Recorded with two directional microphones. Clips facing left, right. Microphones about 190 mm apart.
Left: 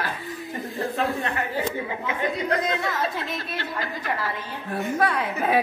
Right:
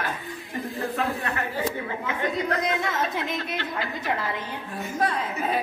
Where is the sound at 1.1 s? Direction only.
10° left (ahead or behind).